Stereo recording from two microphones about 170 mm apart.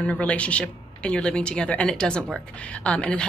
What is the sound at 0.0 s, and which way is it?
Speech, 10° left (ahead or behind).